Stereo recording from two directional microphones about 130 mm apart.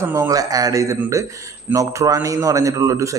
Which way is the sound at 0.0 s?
20° right (ahead or behind).